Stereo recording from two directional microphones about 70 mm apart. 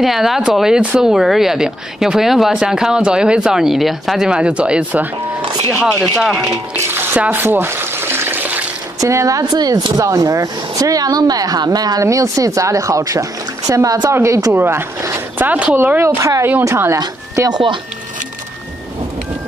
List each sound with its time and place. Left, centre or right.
0.0 s speech: centre
4.3 s speech: centre
6.1 s speech: centre
6.7 s water: right
9.0 s speech: right
9.4 s speech: right
12.0 s speech: right
14.5 s speech: right
16.2 s speech: right